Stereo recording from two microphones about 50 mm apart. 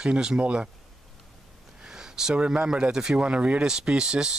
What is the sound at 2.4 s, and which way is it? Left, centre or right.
Speech, centre.